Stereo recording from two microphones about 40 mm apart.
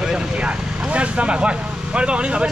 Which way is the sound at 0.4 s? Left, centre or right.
Right.